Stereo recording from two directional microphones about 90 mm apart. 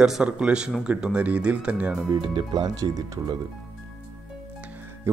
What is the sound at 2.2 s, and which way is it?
Speech, 65° right (ahead or behind).